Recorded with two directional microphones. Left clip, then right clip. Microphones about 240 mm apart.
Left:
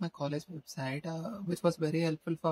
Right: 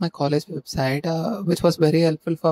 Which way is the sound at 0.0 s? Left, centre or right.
Right.